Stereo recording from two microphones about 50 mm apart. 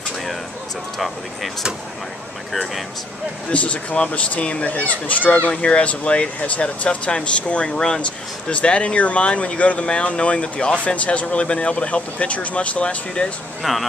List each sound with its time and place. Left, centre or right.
0.9 s speech: centre
2.5 s speech: centre
3.5 s speech: left
13.6 s speech: centre